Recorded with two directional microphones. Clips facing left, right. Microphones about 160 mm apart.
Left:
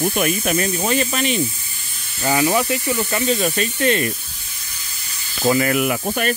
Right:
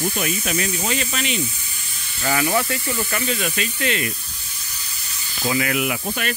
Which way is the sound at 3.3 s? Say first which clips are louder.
Left 5 dB; 40° left (ahead or behind).